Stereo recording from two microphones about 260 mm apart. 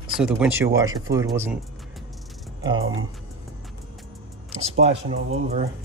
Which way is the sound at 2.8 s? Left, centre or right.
Right.